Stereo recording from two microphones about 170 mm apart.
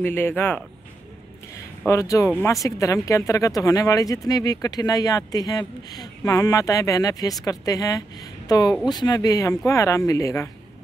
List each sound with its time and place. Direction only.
0.0 s speech: 10° left (ahead or behind)
1.9 s speech: 20° left (ahead or behind)